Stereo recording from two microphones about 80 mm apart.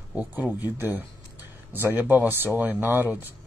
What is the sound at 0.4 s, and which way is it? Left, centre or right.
Speech, right.